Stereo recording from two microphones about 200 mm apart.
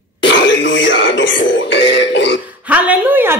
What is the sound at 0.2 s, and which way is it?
Music, 65° left (ahead or behind).